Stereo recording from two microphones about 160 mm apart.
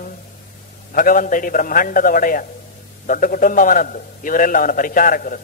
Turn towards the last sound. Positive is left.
turn(degrees=60)  # may be behind; listen again after turning